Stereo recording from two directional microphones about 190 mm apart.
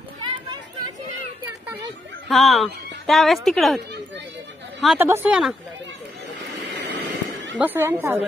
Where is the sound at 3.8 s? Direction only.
65° right (ahead or behind).